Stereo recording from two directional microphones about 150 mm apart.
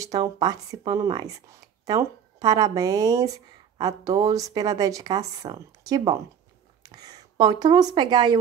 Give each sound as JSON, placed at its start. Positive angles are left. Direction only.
{"t": 0.0, "sound": "speech", "side_deg": -25}